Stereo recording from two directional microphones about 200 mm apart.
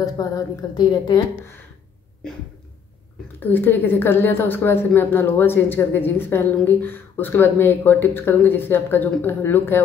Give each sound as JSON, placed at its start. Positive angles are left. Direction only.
{"t": 0.0, "sound": "a woman's voice", "side_deg": 20}
{"t": 3.3, "sound": "a woman's voice", "side_deg": 10}